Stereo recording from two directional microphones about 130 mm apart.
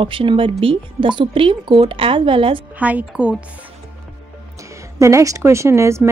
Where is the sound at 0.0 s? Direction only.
40° right (ahead or behind).